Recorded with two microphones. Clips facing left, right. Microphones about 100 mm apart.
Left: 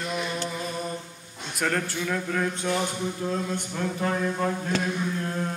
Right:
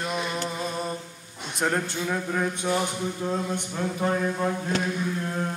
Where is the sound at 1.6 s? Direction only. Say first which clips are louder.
Right 1 dB; 20° right (ahead or behind).